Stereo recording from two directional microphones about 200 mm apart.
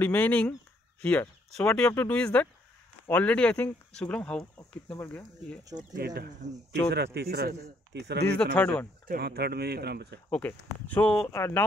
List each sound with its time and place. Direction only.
0.0 s speech: 10° left (ahead or behind)
5.8 s speech: 50° right (ahead or behind)
8.5 s speech: 5° left (ahead or behind)
9.0 s speech: 50° right (ahead or behind)
10.3 s speech: 5° left (ahead or behind)